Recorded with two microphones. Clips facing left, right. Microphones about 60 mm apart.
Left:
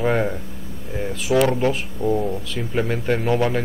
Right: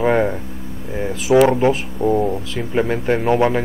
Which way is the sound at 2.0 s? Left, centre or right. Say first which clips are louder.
Right 4 dB; right.